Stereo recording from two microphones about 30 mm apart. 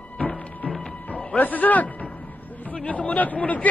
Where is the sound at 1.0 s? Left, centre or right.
Left.